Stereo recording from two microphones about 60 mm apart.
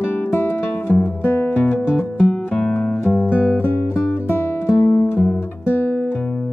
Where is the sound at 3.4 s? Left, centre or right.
Left.